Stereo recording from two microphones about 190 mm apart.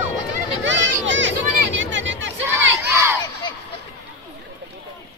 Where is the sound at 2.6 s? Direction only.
75° right (ahead or behind).